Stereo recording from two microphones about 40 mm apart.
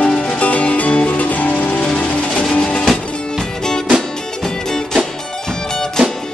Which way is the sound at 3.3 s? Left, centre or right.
Centre.